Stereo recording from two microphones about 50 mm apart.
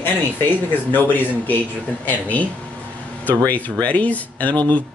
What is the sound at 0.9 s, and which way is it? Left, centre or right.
Speech, left.